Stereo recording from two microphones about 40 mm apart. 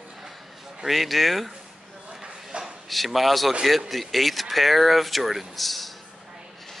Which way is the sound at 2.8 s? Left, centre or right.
Centre.